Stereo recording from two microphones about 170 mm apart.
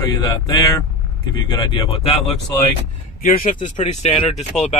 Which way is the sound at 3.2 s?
55° left (ahead or behind).